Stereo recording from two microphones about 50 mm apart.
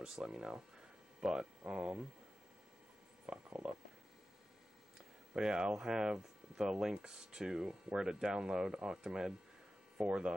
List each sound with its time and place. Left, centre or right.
0.0 s speech: centre
1.7 s hum: centre
3.3 s a sound: right
5.3 s hum: centre